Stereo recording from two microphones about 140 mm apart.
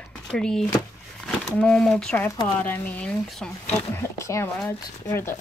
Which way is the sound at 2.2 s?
25° left (ahead or behind).